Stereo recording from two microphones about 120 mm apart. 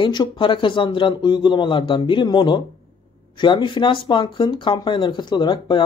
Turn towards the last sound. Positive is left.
turn(degrees=40)  # may be behind; listen again after turning